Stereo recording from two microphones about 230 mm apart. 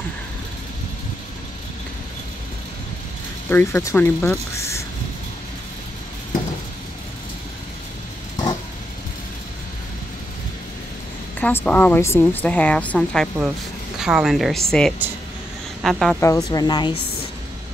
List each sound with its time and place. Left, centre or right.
3.4 s speech: centre
11.3 s a woman's voice: centre
16.3 s speech: centre